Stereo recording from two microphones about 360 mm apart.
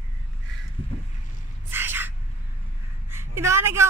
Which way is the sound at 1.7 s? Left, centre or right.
Centre.